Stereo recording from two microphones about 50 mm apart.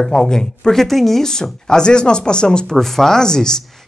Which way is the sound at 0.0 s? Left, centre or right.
Centre.